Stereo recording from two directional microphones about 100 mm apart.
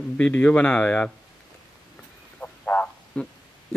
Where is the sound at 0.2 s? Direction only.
15° left (ahead or behind).